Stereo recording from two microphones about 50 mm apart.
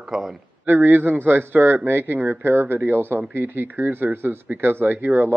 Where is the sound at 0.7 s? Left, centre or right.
Right.